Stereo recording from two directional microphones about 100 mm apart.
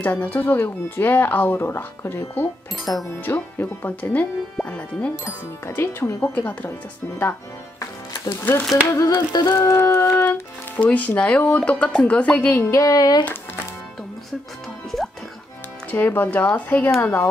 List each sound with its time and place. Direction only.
0.0 s speech: 20° left (ahead or behind)
8.3 s speech: 20° left (ahead or behind)
9.3 s music: 45° left (ahead or behind)
9.6 s speech: 25° left (ahead or behind)
10.8 s speech: 15° left (ahead or behind)
12.7 s child singing: 40° left (ahead or behind)
15.9 s speech: 20° left (ahead or behind)